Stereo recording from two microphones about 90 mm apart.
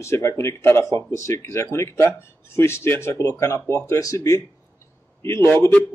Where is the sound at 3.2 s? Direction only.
35° left (ahead or behind).